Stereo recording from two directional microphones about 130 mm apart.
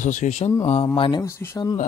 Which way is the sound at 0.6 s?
45° left (ahead or behind).